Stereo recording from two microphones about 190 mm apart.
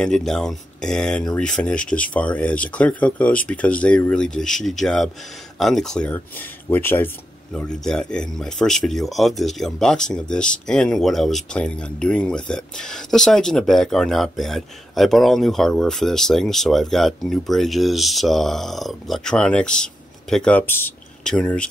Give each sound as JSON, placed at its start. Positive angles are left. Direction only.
{"t": 0.0, "sound": "speech", "side_deg": 0}